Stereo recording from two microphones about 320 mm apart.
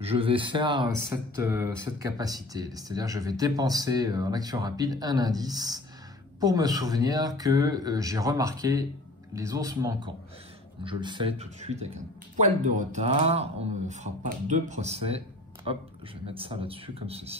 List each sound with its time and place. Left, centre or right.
0.0 s speech: centre